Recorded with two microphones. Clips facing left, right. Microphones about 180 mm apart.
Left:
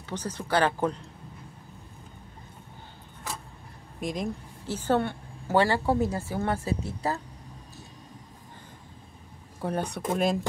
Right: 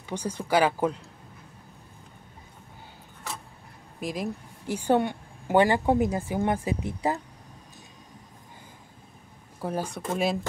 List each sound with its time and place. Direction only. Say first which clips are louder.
0.1 s a woman's voice: right 3 dB; 10° right (ahead or behind)
4.0 s speech: even; 5° right (ahead or behind)
4.6 s a woman's voice: right 2 dB; 15° right (ahead or behind)
9.6 s speech: left 1 dB; centre (ahead or behind)